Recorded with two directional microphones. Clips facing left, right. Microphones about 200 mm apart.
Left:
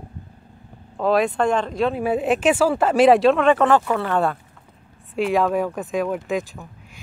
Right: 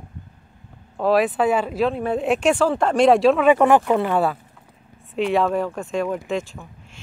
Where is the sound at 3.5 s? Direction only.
15° right (ahead or behind).